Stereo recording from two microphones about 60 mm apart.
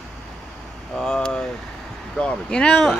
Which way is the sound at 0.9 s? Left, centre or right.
Centre.